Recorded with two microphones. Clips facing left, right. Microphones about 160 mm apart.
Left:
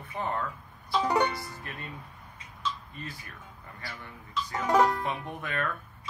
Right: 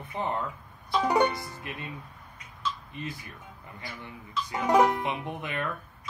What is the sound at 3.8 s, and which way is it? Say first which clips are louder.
Speech: right 2 dB; 15° right (ahead or behind).